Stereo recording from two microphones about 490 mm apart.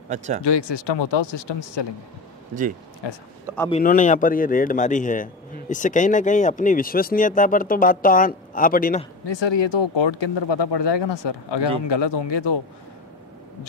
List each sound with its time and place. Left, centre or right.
0.4 s speech: left
3.0 s speech: left
3.5 s a man's voice: centre
9.2 s speech: left